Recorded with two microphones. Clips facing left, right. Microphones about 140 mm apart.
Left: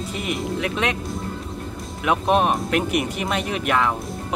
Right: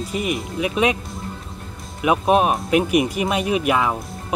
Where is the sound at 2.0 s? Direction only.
10° right (ahead or behind).